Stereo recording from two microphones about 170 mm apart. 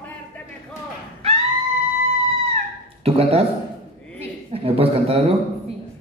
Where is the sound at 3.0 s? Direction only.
35° right (ahead or behind).